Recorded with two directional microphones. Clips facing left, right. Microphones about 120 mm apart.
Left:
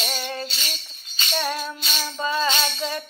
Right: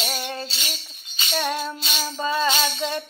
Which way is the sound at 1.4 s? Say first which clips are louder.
Right 2 dB; 40° right (ahead or behind).